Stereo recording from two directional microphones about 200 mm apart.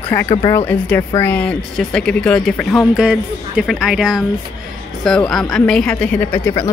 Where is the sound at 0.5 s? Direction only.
10° left (ahead or behind).